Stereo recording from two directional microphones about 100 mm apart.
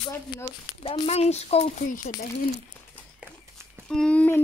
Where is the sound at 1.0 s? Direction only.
90° left.